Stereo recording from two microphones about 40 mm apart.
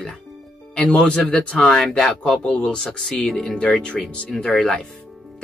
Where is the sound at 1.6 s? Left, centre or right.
Centre.